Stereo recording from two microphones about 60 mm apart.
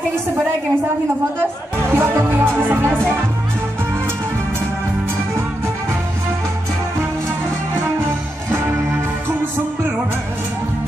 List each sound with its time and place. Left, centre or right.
1.9 s music: right